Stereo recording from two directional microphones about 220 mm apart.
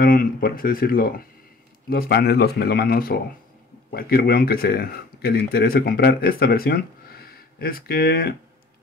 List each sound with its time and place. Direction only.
0.0 s speech: 40° left (ahead or behind)